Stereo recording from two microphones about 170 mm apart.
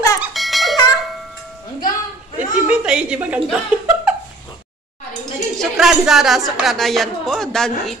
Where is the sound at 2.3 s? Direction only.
10° right (ahead or behind).